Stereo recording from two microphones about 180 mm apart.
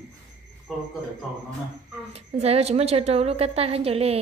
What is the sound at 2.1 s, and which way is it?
A woman's voice, 35° right (ahead or behind).